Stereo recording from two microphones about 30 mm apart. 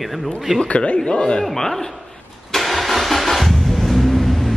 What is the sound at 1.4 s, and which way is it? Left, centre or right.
Speech, centre.